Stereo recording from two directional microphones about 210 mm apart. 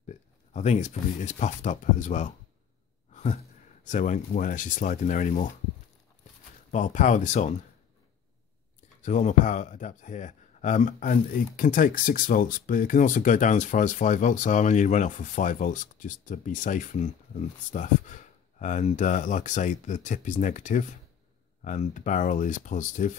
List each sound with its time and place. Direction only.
0.0 s speech: 35° left (ahead or behind)
3.1 s sigh: 35° left (ahead or behind)
3.8 s a man's voice: 35° left (ahead or behind)
6.7 s a man's voice: 35° left (ahead or behind)
9.0 s a man's voice: 35° left (ahead or behind)